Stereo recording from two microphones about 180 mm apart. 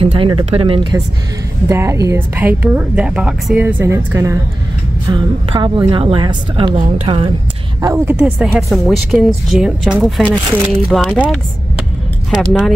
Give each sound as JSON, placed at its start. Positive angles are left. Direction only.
{"t": 0.0, "sound": "a woman's voice", "side_deg": -30}
{"t": 1.7, "sound": "a woman's voice", "side_deg": -15}
{"t": 7.8, "sound": "a woman's voice", "side_deg": -15}
{"t": 10.7, "sound": "a woman's voice", "side_deg": 0}